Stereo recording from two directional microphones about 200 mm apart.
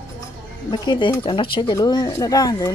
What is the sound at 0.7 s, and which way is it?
Speech, 25° left (ahead or behind).